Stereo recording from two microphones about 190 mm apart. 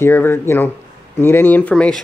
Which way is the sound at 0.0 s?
10° left (ahead or behind).